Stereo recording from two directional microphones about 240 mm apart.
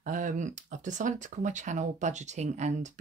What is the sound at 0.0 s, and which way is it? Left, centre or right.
Speech, right.